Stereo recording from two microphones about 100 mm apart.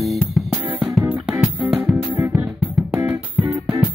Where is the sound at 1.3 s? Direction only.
10° right (ahead or behind).